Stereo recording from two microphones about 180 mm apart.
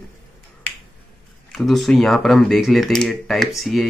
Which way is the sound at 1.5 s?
Centre (ahead or behind).